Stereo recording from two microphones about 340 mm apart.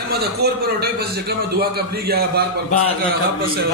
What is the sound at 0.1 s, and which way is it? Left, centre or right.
A man's voice, right.